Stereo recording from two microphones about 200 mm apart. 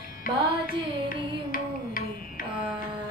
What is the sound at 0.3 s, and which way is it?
Carnatic music, 45° left (ahead or behind).